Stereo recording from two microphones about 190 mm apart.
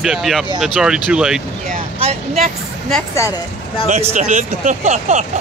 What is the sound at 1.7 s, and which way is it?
Vehicle, 30° right (ahead or behind).